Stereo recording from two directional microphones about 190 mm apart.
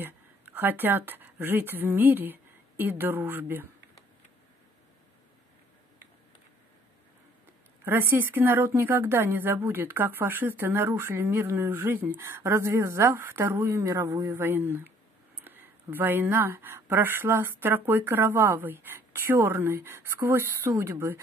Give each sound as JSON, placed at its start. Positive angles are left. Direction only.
{"t": 0.0, "sound": "speech", "side_deg": -10}
{"t": 7.8, "sound": "speech", "side_deg": -10}